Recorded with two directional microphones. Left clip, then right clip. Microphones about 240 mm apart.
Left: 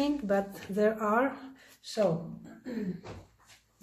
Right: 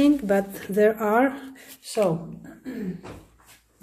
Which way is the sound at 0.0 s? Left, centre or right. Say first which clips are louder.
Right 8 dB; right.